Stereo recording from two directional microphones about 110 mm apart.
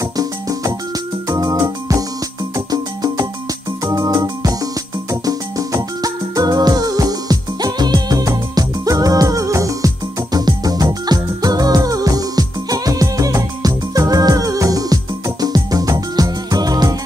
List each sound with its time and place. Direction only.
0.0 s music: 35° right (ahead or behind)